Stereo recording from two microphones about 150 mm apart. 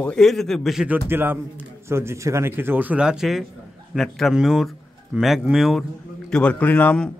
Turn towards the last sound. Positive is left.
turn(degrees=10)  # may be behind; listen again after turning